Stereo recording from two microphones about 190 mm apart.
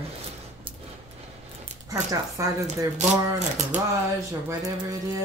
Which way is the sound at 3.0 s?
40° right (ahead or behind).